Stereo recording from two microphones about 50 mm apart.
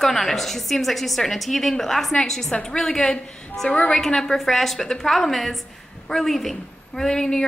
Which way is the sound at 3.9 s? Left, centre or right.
Centre.